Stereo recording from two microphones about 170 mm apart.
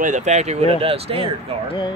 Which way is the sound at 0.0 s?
45° right (ahead or behind).